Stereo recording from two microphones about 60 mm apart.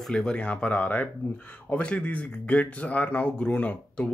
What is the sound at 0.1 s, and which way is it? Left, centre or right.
Speech, centre.